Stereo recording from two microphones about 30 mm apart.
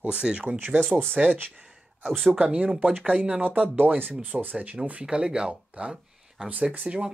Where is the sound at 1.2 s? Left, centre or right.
Right.